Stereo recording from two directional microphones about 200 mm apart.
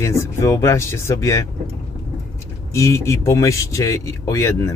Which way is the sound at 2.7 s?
15° left (ahead or behind).